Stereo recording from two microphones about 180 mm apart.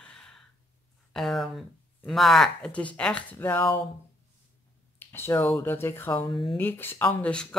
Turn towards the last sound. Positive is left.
turn(degrees=5)  # may be behind; listen again after turning